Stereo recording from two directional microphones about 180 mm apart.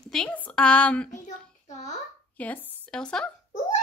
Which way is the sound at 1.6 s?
40° left (ahead or behind).